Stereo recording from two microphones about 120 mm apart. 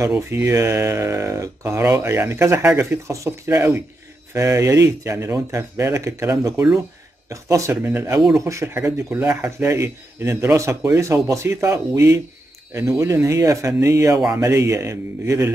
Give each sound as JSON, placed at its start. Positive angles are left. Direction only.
{"t": 0.3, "sound": "speech", "side_deg": -25}